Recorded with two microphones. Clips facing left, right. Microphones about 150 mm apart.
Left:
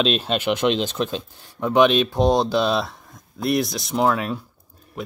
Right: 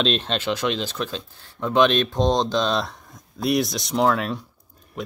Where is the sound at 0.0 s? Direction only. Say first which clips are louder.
Left 2 dB; 5° left (ahead or behind).